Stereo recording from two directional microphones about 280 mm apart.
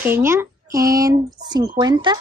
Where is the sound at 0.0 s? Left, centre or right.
Centre.